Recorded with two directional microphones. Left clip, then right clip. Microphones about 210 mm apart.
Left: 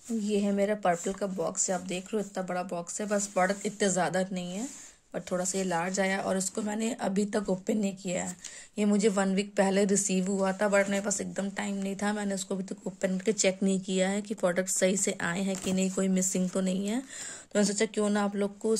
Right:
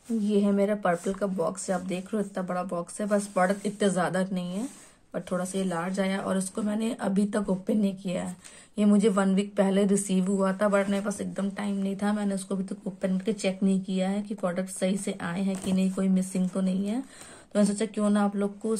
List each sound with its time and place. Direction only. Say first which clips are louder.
0.2 s a woman's voice: right 3 dB; 10° left (ahead or behind)